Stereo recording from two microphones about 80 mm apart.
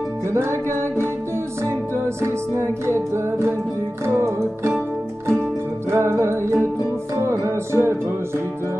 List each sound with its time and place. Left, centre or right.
0.3 s music: right
2.2 s music: right
4.0 s music: right
5.9 s music: right